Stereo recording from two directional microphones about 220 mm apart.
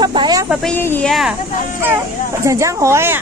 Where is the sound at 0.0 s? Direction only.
20° right (ahead or behind).